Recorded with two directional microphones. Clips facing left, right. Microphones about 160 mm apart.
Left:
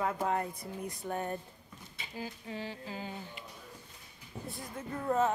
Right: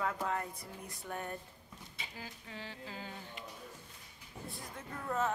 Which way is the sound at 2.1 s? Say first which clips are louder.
Left 9 dB; 20° left (ahead or behind).